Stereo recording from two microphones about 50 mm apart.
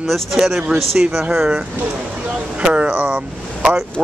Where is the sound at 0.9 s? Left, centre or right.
Centre.